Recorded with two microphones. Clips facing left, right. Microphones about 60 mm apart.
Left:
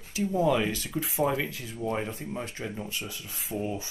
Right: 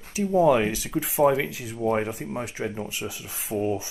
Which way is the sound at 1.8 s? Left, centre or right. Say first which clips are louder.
Right 6 dB; right.